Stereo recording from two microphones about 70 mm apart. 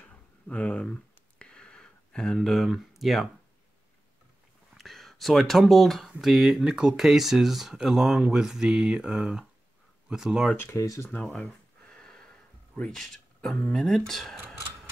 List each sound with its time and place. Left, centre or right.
0.0 s a sound: centre
4.7 s speech: centre
10.5 s speech: left
10.8 s speech: left
11.3 s a sound: centre
12.7 s speech: centre